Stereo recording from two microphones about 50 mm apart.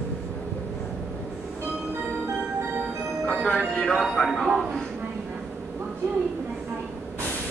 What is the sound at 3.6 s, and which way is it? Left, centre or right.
Speech, centre.